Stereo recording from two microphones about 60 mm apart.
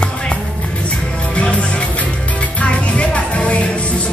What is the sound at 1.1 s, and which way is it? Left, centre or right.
Music, centre.